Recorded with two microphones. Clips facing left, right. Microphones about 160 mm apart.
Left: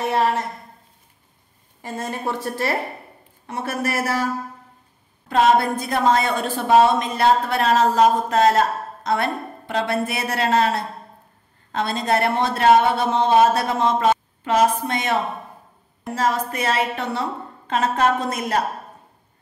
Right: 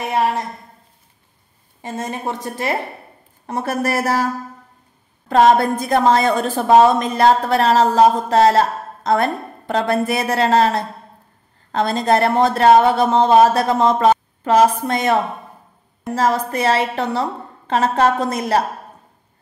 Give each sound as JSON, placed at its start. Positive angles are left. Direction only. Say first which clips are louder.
{"t": 0.0, "sound": "speech", "louder": "right 1 dB", "side_deg": -15}
{"t": 1.8, "sound": "a woman's voice", "louder": "right 2 dB", "side_deg": -20}
{"t": 3.4, "sound": "a woman's voice", "louder": "right 4 dB", "side_deg": -40}
{"t": 5.3, "sound": "a woman's voice", "louder": "right 4 dB", "side_deg": -45}
{"t": 16.2, "sound": "a woman's voice", "louder": "right 4 dB", "side_deg": -35}